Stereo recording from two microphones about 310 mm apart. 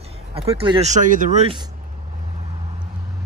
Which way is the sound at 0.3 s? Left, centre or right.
Centre.